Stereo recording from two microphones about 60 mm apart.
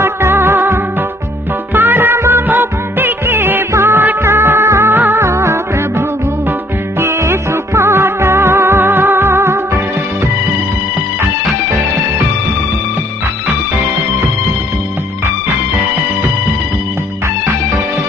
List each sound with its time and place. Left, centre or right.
0.0 s music: right
5.2 s music: right